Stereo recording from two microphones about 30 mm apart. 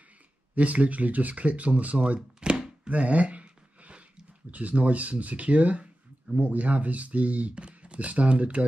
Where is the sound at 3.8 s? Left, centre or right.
Right.